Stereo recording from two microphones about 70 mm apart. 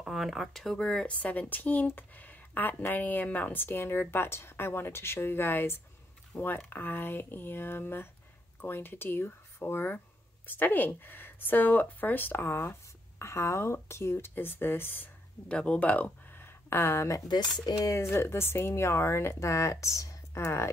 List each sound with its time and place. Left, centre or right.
0.0 s speech: centre; by 15.0 s left
15.4 s speech: centre
16.3 s a sound: left
17.3 s speech: left
17.8 s speech: left
20.3 s speech: left